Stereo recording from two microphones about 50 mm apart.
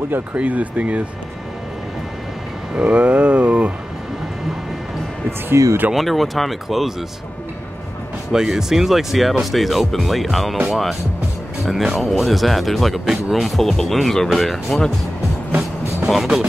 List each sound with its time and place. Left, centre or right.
0.1 s speech: right
2.7 s speech: right
5.6 s speech: right
5.9 s speech: centre
8.3 s speech: centre